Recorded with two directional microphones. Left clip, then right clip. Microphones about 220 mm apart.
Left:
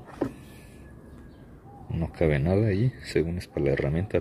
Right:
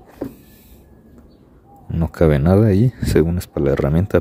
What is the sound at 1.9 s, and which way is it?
Speech, 30° right (ahead or behind).